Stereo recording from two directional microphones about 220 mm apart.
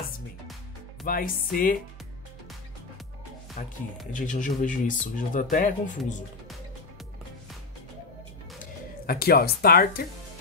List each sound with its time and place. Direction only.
1.0 s speech: 40° left (ahead or behind)
3.6 s speech: 35° left (ahead or behind)
9.0 s speech: 45° left (ahead or behind)